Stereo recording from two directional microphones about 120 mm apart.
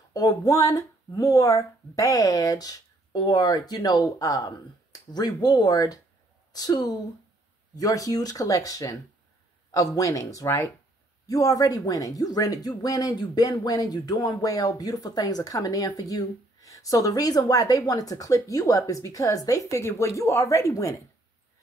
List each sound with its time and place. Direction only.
0.1 s speech: 30° left (ahead or behind)